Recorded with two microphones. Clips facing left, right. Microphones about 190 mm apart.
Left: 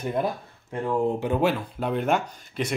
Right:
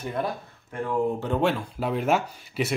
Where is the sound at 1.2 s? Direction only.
5° left (ahead or behind).